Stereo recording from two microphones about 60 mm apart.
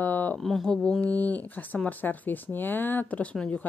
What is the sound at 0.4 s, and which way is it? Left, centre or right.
Speech, centre.